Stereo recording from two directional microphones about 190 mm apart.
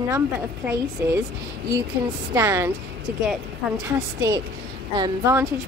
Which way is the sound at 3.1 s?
50° right (ahead or behind).